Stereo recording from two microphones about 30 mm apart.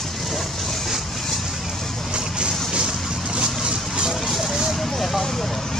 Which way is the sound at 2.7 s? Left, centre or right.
Right.